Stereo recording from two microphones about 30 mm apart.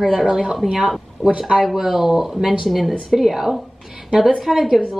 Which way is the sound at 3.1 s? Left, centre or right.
Centre.